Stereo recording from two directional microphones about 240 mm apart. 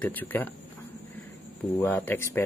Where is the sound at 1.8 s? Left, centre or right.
Centre.